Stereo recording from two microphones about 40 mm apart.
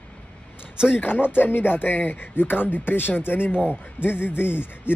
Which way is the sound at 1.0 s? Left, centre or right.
Left.